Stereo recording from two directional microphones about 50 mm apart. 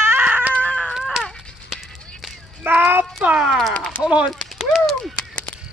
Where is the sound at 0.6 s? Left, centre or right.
Left.